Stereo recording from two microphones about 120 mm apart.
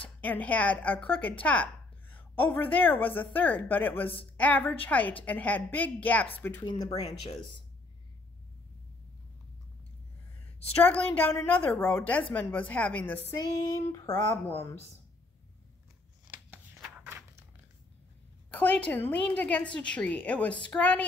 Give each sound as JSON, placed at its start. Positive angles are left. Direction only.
{"t": 0.2, "sound": "a woman's voice", "side_deg": 15}
{"t": 6.6, "sound": "speech", "side_deg": 35}
{"t": 10.8, "sound": "a woman's voice", "side_deg": 10}
{"t": 13.4, "sound": "speech", "side_deg": 30}
{"t": 18.5, "sound": "a woman's voice", "side_deg": 10}